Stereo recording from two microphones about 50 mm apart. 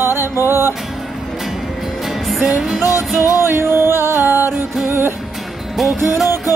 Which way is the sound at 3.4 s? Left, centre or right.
Right.